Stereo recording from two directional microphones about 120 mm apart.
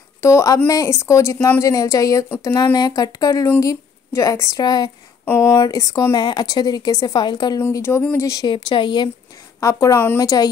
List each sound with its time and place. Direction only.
0.2 s a woman's voice: 25° left (ahead or behind)
5.2 s a woman's voice: 20° left (ahead or behind); by 7.6 s 35° left (ahead or behind)
7.7 s a woman's voice: 20° left (ahead or behind)
8.3 s speech: 35° left (ahead or behind)
9.6 s a woman's voice: 25° left (ahead or behind)